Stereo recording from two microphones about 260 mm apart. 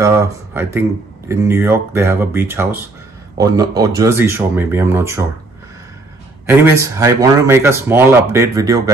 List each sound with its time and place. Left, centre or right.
0.0 s speech: centre
6.5 s speech: centre